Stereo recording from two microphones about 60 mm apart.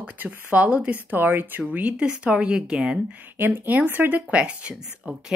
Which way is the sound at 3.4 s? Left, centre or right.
Right.